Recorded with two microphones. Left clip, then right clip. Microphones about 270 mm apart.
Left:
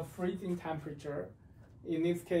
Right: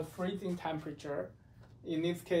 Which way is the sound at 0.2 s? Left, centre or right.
Centre.